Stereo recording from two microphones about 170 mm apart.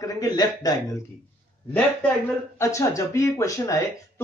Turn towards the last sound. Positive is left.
turn(degrees=20)  # may be behind; listen again after turning